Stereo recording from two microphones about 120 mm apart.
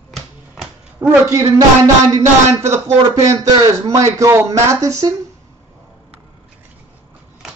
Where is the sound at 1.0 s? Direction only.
25° right (ahead or behind).